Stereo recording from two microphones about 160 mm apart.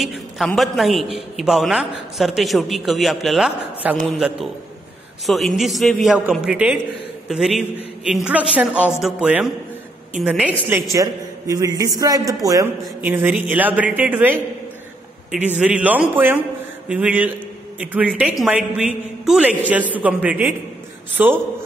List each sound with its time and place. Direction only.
0.0 s a man's voice: centre (ahead or behind)
11.0 s a man's voice: 20° right (ahead or behind)
13.0 s a man's voice: 10° right (ahead or behind)